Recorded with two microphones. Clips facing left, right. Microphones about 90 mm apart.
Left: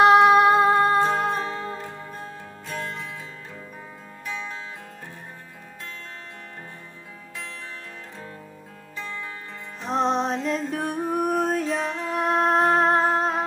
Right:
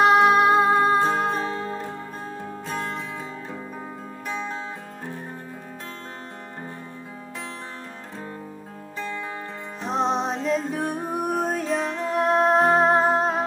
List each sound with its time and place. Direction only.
0.0 s music: centre (ahead or behind); by 1.6 s 15° right (ahead or behind)
2.7 s music: 25° right (ahead or behind)
9.8 s music: centre (ahead or behind)